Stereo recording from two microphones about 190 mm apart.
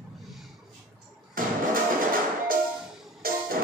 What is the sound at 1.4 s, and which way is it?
Music, 45° right (ahead or behind).